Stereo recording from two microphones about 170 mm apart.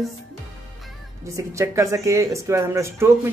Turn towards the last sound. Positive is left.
turn(degrees=-15)  # may be behind; listen again after turning